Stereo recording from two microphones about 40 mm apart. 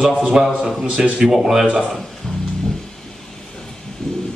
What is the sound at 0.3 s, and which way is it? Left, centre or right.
Speech, centre.